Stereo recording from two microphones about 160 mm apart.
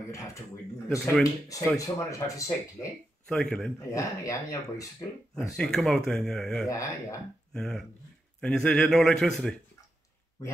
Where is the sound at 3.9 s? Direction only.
20° left (ahead or behind).